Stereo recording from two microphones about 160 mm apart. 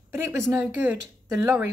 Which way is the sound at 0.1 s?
15° right (ahead or behind).